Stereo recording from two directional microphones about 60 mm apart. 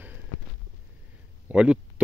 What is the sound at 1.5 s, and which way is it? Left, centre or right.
Speech, centre.